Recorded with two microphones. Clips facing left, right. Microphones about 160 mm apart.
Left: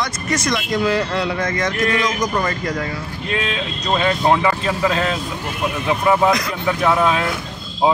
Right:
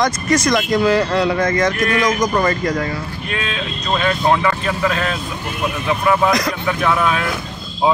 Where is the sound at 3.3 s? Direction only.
25° left (ahead or behind).